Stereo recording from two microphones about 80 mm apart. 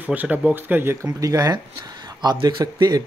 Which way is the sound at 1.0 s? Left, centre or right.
Right.